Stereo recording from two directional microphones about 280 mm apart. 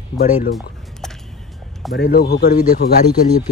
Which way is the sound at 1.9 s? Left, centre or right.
Left.